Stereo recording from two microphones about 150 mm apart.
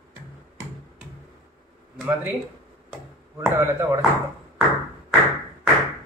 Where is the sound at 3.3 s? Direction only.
15° right (ahead or behind).